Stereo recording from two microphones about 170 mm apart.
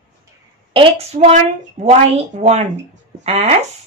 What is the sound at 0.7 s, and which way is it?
Speech, 40° right (ahead or behind).